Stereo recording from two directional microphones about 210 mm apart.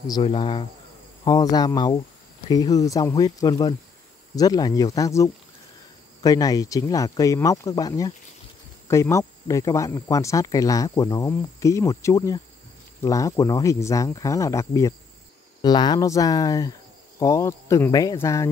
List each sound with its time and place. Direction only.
0.0 s speech: 20° left (ahead or behind)